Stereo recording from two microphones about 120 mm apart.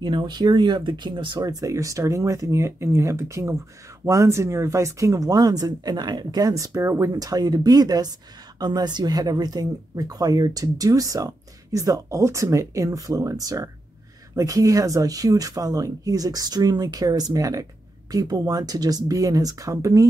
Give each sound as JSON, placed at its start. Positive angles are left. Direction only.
{"t": 0.0, "sound": "speech", "side_deg": -40}